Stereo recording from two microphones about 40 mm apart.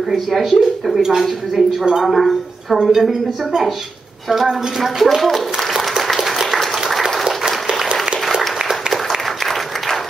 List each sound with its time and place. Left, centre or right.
0.1 s a woman's voice: centre
6.0 s applause: centre
7.2 s applause: centre